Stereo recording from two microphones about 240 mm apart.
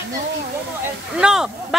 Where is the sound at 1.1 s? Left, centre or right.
Centre.